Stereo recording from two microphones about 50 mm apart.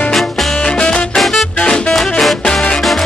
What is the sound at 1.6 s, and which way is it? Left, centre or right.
Music, centre.